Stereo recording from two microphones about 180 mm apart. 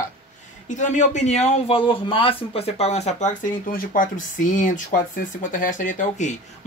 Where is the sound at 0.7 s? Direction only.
45° left (ahead or behind).